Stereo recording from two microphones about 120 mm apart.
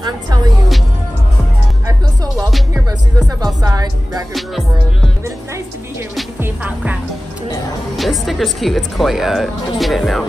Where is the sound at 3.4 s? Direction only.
35° right (ahead or behind).